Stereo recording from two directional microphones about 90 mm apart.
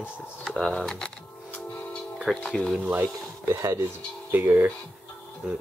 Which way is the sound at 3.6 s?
35° right (ahead or behind).